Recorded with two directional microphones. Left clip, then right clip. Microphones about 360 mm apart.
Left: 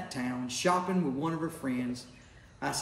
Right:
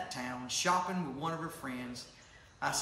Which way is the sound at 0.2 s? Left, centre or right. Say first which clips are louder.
Left 5 dB; centre.